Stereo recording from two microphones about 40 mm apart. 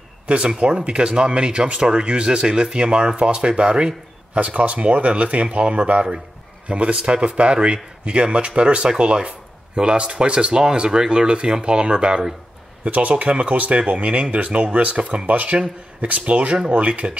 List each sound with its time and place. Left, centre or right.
0.6 s speech: right
4.4 s speech: right
12.8 s speech: right
15.5 s speech: right